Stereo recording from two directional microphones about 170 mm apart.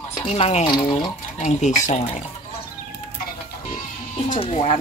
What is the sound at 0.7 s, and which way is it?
Speech, 25° left (ahead or behind).